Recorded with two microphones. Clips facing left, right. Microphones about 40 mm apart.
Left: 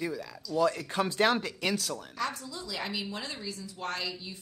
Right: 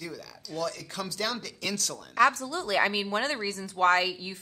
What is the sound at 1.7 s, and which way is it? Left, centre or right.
Speech, centre.